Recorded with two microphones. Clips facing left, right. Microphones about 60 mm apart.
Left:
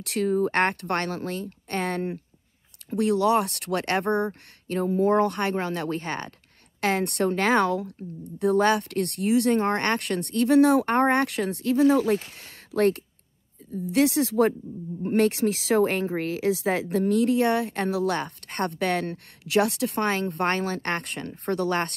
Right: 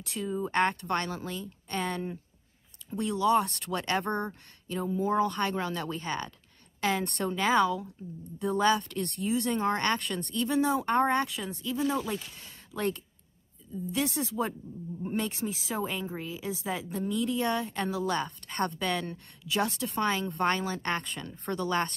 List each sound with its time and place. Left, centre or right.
0.0 s speech: left
3.0 s speech: left
5.3 s a woman's voice: left
8.4 s speech: left
13.7 s a woman's voice: left
16.2 s a woman's voice: left
18.1 s speech: left
19.0 s speech: left
20.1 s speech: left